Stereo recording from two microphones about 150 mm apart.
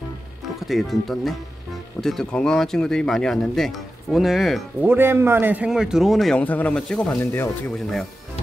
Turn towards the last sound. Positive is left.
turn(degrees=15)  # may be behind; listen again after turning